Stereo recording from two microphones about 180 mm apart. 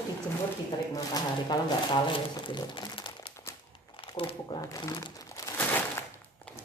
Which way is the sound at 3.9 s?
30° left (ahead or behind).